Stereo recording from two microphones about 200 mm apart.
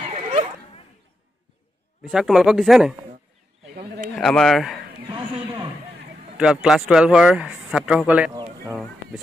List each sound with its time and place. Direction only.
2.0 s speech: centre (ahead or behind)
4.1 s speech: centre (ahead or behind)
5.0 s a sound: 25° right (ahead or behind)
6.3 s speech: 5° right (ahead or behind)